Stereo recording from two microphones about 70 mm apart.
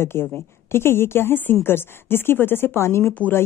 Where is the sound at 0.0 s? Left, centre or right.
Left.